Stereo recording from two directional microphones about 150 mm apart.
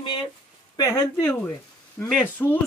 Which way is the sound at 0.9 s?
10° left (ahead or behind).